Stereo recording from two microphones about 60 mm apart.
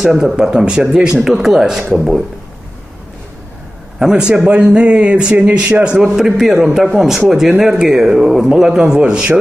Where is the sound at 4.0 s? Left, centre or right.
Centre.